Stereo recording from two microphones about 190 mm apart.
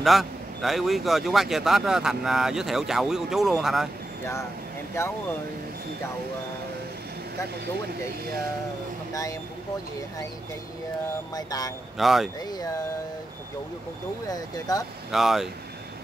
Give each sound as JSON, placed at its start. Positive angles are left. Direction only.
{"t": 0.0, "sound": "a man's voice", "side_deg": 0}
{"t": 5.0, "sound": "speech", "side_deg": 15}
{"t": 9.1, "sound": "speech", "side_deg": 15}
{"t": 11.3, "sound": "speech", "side_deg": 20}
{"t": 12.0, "sound": "a man's voice", "side_deg": 0}
{"t": 12.4, "sound": "speech", "side_deg": 20}
{"t": 14.2, "sound": "speech", "side_deg": 20}
{"t": 15.0, "sound": "a man's voice", "side_deg": 0}